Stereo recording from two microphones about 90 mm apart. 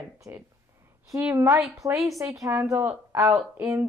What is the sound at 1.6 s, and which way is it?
Speech, 35° right (ahead or behind).